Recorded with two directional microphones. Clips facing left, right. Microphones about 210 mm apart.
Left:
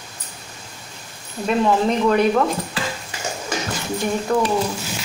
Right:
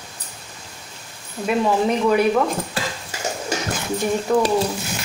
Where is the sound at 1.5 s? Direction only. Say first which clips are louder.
Left 1 dB; 10° right (ahead or behind).